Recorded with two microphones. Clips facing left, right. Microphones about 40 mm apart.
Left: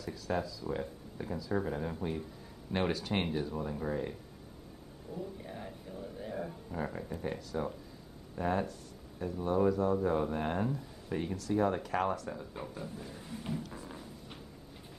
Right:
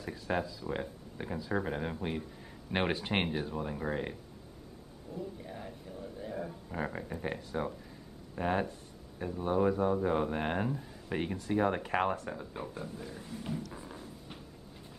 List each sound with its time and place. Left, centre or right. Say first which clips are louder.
0.0 s speech: right 1 dB; right
5.1 s speech: even; centre
6.7 s speech: right 2 dB; right
7.3 s speech: right 1 dB; right
12.6 s speech: right 1 dB; centre